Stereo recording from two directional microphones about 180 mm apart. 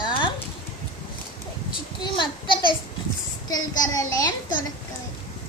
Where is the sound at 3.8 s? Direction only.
20° left (ahead or behind).